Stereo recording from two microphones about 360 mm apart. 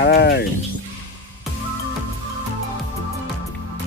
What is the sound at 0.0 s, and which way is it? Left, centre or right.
Sheep, left.